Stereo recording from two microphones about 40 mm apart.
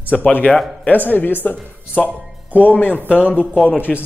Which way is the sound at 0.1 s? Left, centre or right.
Left.